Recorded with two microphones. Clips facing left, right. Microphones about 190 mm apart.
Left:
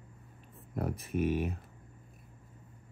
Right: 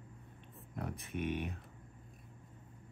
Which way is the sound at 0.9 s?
5° left (ahead or behind).